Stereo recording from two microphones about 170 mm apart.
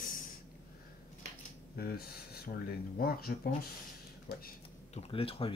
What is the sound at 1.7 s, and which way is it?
Speech, 65° left (ahead or behind).